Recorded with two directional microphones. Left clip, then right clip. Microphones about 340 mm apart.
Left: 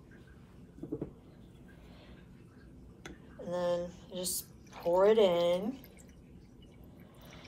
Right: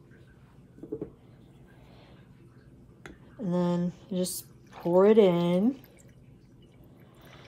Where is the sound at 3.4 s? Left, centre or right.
Right.